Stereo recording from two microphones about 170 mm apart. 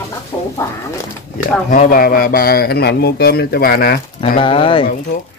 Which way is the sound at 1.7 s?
55° left (ahead or behind).